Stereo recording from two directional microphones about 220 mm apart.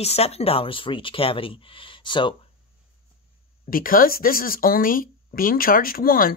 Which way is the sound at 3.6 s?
40° left (ahead or behind).